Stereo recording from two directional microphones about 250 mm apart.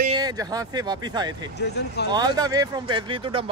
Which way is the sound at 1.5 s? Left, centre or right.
Left.